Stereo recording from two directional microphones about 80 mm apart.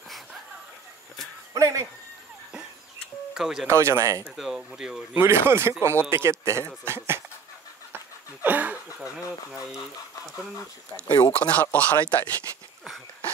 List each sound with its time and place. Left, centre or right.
1.5 s speech: right
3.3 s speech: centre
3.6 s a man's voice: right
4.4 s speech: centre
5.1 s a man's voice: right
7.9 s a sound: right
9.5 s speech: centre
11.3 s speech: left